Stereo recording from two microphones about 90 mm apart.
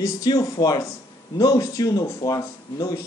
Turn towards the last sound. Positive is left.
turn(degrees=40)  # may be behind; listen again after turning